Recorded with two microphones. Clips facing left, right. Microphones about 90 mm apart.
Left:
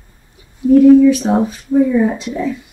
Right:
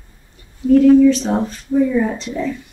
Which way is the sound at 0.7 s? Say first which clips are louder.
Left 3 dB; 10° left (ahead or behind).